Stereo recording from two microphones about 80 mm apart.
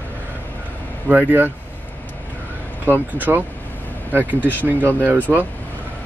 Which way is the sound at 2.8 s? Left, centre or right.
Right.